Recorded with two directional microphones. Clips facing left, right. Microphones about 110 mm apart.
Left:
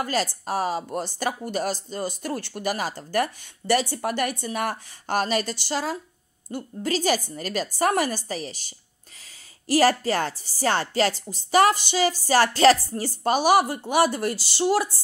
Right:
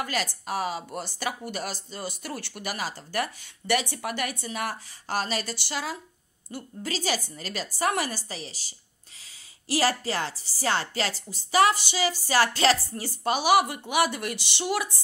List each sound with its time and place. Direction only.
0.0 s a woman's voice: 40° left (ahead or behind)